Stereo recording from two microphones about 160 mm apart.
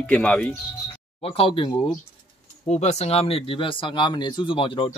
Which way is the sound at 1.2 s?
35° left (ahead or behind).